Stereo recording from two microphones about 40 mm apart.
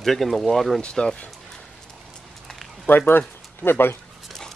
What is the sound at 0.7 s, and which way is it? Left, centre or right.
Speech, centre.